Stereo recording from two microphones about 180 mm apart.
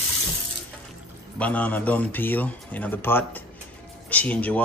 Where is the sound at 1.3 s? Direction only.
10° left (ahead or behind).